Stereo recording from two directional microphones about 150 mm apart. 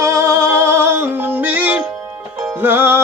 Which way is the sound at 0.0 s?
20° right (ahead or behind).